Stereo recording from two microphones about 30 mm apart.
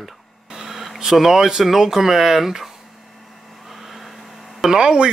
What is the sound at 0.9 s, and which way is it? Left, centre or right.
Speech, centre.